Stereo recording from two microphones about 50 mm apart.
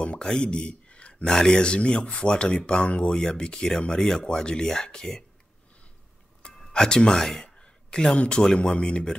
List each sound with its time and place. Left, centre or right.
0.2 s speech: centre
1.2 s speech: centre
6.7 s speech: centre